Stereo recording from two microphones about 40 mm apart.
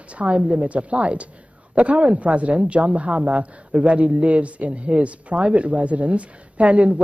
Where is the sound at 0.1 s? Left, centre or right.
Right.